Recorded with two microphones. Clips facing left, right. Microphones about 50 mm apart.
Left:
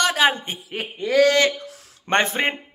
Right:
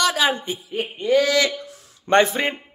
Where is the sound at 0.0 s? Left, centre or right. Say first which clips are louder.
Left 1 dB; left.